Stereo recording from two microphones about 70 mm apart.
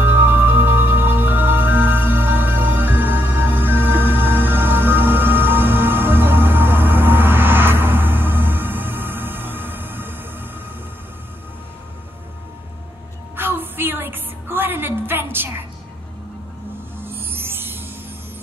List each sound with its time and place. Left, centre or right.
0.0 s music: right
13.4 s music: right
17.0 s music: right